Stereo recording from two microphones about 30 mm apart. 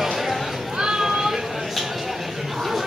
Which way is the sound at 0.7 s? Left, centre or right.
Right.